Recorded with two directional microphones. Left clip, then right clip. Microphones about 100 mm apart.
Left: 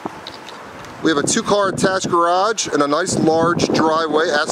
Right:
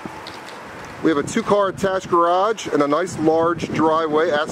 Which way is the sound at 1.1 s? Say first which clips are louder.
Left 2 dB; 30° left (ahead or behind).